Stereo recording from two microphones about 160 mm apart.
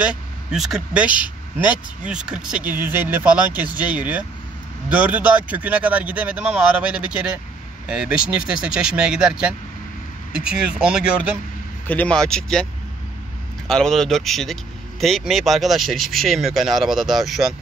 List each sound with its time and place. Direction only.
0.0 s speech: 5° right (ahead or behind)
11.9 s speech: 10° left (ahead or behind)
13.7 s speech: 5° left (ahead or behind)